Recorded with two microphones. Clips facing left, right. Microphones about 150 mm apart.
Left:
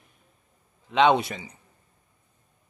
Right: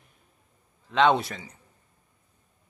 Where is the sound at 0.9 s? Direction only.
15° left (ahead or behind).